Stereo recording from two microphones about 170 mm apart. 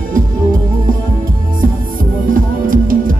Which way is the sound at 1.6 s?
55° right (ahead or behind).